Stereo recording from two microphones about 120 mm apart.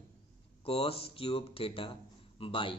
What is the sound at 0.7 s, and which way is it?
A man's voice, 55° left (ahead or behind).